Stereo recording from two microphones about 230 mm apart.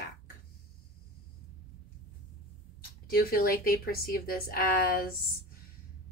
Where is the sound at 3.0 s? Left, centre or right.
Left.